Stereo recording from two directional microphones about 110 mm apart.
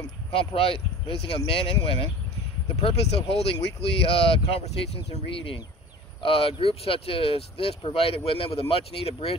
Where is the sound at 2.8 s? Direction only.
65° left (ahead or behind).